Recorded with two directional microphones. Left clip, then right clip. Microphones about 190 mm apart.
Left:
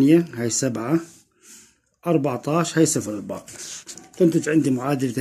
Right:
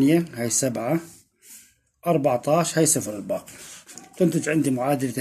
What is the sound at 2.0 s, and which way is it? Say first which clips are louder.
A man's voice: right 1 dB; 40° left (ahead or behind).